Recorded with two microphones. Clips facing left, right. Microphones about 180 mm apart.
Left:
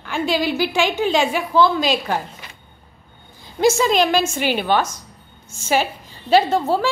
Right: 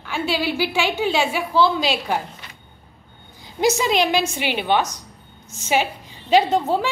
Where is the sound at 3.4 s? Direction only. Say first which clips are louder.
Left 3 dB; 15° right (ahead or behind).